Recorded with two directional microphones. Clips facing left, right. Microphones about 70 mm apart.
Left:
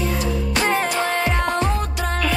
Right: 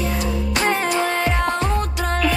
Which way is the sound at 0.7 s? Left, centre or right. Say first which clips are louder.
Even; centre.